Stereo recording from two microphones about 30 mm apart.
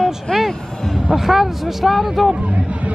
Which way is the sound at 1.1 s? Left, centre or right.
Centre.